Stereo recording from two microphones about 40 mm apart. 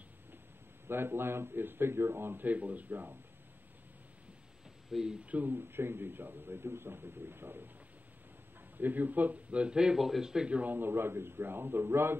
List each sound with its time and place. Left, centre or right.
0.8 s a man's voice: right
2.4 s speech: right
5.2 s speech: right
5.5 s a man's voice: right
8.7 s speech: right
9.5 s speech: right
9.9 s speech: centre
10.2 s speech: centre
10.5 s speech: right
10.8 s a man's voice: right